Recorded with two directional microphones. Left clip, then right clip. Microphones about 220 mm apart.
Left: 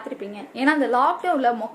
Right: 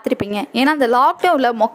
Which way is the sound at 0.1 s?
55° right (ahead or behind).